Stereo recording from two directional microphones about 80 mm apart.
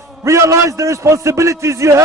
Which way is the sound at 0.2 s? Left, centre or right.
Right.